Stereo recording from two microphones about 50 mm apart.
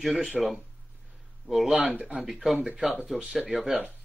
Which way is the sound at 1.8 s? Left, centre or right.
Right.